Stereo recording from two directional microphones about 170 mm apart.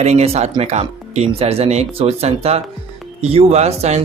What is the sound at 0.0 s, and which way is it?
Speech, 40° right (ahead or behind).